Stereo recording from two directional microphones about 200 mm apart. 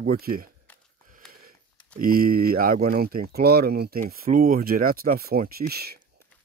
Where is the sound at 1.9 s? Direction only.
45° right (ahead or behind).